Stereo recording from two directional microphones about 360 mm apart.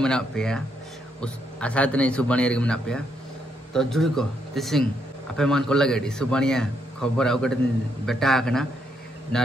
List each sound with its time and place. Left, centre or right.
0.0 s a man's voice: centre